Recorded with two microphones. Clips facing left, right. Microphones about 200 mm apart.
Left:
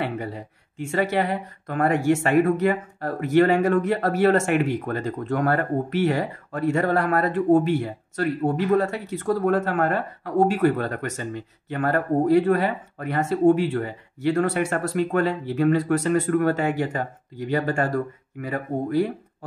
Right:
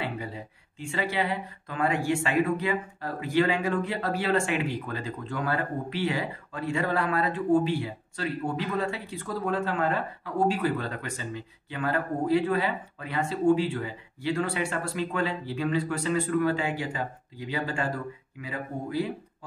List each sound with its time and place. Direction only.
0.7 s speech: 50° left (ahead or behind)